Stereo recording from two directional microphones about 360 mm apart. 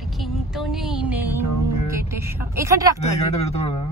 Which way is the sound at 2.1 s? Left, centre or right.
Centre.